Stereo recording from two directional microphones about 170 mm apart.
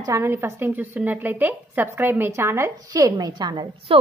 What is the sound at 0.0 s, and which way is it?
A woman's voice, 15° right (ahead or behind).